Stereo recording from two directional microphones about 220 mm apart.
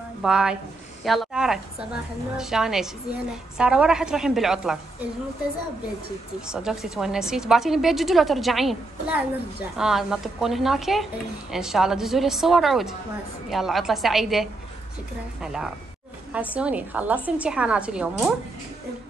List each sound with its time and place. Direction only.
0.2 s a woman's voice: 5° right (ahead or behind)
6.4 s a woman's voice: 5° right (ahead or behind)